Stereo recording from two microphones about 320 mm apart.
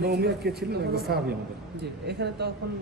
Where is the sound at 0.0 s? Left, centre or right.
Right.